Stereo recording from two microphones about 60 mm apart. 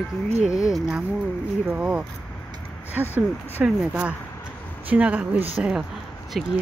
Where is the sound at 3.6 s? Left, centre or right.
Centre.